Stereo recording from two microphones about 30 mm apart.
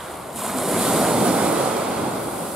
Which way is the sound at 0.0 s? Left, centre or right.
Centre.